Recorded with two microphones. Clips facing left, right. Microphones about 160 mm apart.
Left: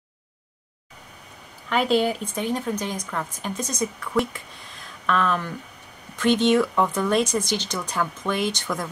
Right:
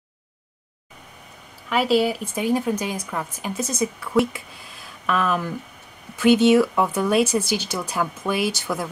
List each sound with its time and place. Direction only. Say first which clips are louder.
1.7 s a woman's voice: right 1 dB; 5° right (ahead or behind)